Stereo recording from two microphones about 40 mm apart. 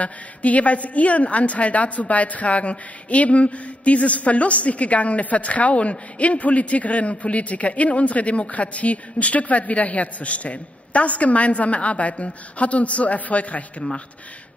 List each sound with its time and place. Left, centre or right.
0.0 s a woman's voice: left